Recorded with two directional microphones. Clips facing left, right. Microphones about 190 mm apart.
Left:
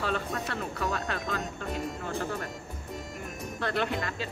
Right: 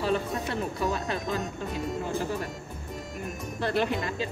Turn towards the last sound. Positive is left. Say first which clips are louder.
# right 3 dB
turn(degrees=-20)  # may be behind; listen again after turning